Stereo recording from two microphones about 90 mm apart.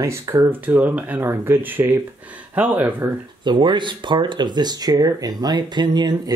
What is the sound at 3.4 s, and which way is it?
Speech, 60° right (ahead or behind).